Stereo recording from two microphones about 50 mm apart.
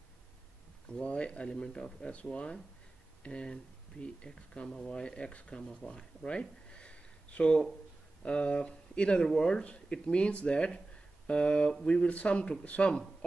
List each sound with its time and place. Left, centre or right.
1.0 s speech: left
5.8 s a sound: centre
8.2 s speech: left
12.1 s speech: left